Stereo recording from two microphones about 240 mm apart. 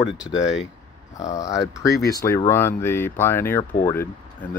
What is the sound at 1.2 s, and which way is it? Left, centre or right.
Speech, centre.